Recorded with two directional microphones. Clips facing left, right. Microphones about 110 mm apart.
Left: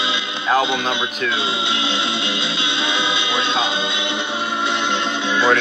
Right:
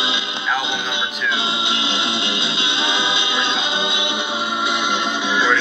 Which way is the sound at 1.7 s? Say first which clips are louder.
Left 1 dB; 20° right (ahead or behind).